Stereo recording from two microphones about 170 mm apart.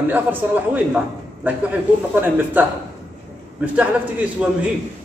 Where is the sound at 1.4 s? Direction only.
10° right (ahead or behind).